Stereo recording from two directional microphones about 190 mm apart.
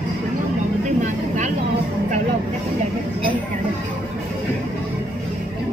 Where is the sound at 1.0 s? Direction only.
40° right (ahead or behind).